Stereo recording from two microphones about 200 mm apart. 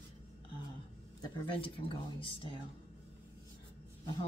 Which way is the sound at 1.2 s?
25° left (ahead or behind).